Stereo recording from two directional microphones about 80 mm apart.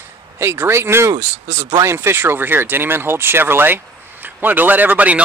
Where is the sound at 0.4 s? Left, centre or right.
Right.